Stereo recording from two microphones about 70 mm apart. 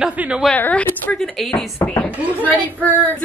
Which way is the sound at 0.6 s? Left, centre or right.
Left.